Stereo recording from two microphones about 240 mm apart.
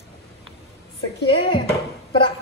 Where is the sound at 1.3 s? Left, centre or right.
Left.